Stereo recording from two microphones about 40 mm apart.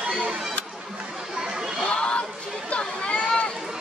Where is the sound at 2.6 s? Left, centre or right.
Left.